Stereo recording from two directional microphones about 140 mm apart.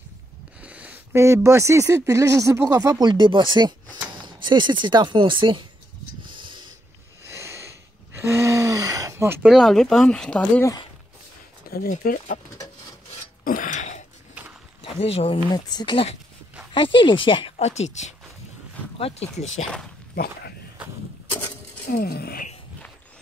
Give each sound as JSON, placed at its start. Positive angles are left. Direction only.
{"t": 0.6, "sound": "speech", "side_deg": -10}
{"t": 6.2, "sound": "a sound", "side_deg": -35}
{"t": 7.2, "sound": "gasp", "side_deg": -20}
{"t": 9.5, "sound": "speech", "side_deg": 0}
{"t": 11.7, "sound": "speech", "side_deg": 90}
{"t": 13.4, "sound": "throat clearing", "side_deg": 75}
{"t": 14.8, "sound": "speech", "side_deg": 45}
{"t": 17.6, "sound": "speech", "side_deg": 50}
{"t": 21.8, "sound": "speech", "side_deg": 90}